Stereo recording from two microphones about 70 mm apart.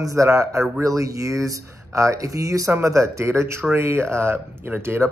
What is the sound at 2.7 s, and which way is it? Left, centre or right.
Speech, right.